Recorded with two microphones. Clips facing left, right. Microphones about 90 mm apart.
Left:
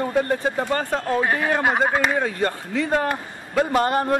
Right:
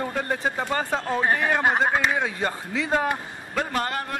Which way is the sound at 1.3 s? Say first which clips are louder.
Left 1 dB; centre (ahead or behind).